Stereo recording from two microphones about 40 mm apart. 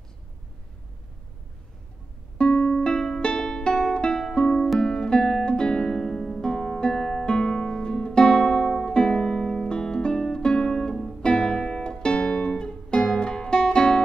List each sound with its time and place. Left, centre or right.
2.3 s music: centre
6.4 s music: centre